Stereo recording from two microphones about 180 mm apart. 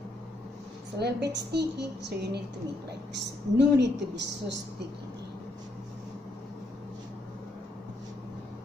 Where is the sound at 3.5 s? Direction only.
70° right (ahead or behind).